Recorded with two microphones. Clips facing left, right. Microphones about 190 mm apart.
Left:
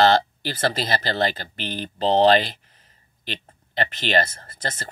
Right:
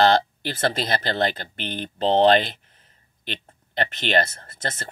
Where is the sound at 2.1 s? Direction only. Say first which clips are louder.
Even; 55° right (ahead or behind).